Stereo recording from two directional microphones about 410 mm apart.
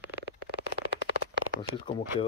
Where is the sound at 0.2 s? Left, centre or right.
Right.